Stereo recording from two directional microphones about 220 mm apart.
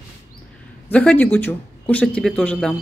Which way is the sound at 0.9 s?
5° left (ahead or behind).